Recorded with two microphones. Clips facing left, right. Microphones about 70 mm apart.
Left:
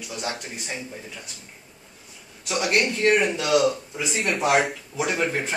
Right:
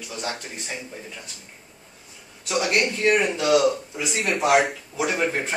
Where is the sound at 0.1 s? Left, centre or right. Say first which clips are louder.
Even; centre.